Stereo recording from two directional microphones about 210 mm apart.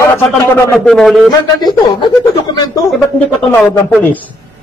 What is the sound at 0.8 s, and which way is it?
Speech, centre (ahead or behind).